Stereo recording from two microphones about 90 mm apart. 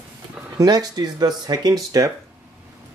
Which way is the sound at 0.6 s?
45° right (ahead or behind).